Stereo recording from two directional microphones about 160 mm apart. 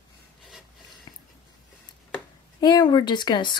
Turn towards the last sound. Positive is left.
turn(degrees=30)  # may be behind; listen again after turning